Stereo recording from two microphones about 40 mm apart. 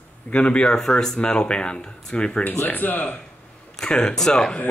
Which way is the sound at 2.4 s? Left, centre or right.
Left.